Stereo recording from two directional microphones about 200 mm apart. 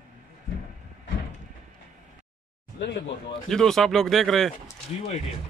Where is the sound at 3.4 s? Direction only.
Centre (ahead or behind).